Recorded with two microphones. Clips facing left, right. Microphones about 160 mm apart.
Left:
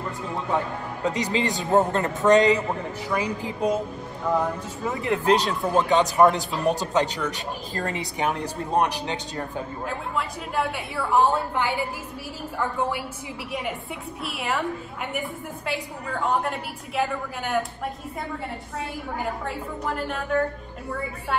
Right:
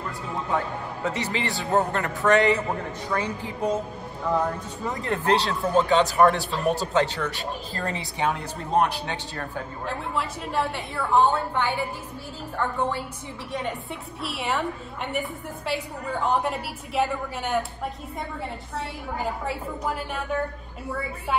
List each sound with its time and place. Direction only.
1.0 s a man's voice: 15° left (ahead or behind)
9.8 s a woman's voice: centre (ahead or behind)
13.5 s a woman's voice: 10° left (ahead or behind)
19.1 s a woman's voice: centre (ahead or behind)